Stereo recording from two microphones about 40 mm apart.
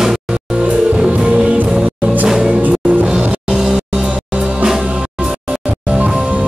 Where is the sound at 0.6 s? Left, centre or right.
Right.